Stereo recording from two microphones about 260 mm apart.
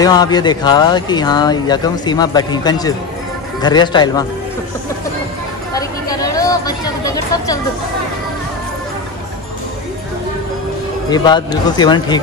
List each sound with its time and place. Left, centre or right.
0.0 s speech: centre
5.8 s a sound: centre
11.1 s speech: centre